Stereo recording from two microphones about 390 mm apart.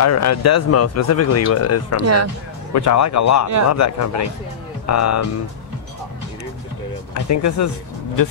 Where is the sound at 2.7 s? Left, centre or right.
Left.